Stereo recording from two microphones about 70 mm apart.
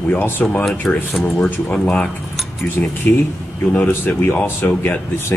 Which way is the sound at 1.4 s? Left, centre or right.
Centre.